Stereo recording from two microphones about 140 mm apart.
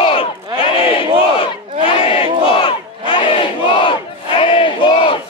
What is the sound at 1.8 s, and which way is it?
Battle cry, 40° left (ahead or behind).